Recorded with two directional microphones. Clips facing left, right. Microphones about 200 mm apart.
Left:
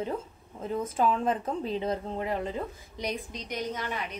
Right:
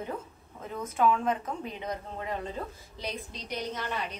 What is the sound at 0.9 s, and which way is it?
A woman's voice, 35° left (ahead or behind).